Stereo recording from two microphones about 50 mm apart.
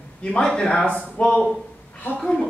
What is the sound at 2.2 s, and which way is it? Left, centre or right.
Speech, centre.